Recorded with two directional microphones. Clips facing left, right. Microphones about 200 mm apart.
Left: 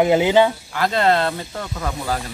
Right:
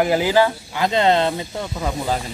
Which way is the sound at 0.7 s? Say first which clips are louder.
Right 2 dB; 20° right (ahead or behind).